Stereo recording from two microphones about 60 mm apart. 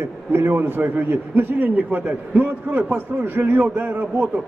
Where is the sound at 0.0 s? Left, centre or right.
Right.